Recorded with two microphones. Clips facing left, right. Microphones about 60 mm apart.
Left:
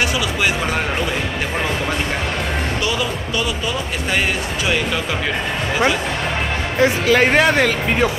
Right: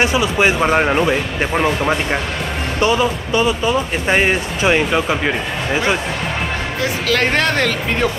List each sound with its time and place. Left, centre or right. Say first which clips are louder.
0.0 s speech: right 4 dB; right
2.8 s speech: right 6 dB; right
6.8 s speech: left 4 dB; centre